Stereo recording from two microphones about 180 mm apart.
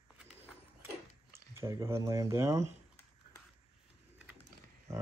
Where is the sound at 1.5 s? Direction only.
15° right (ahead or behind).